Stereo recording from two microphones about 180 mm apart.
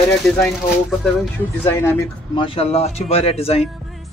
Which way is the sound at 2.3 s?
30° left (ahead or behind).